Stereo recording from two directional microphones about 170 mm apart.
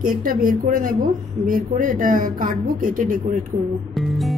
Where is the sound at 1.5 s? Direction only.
50° right (ahead or behind).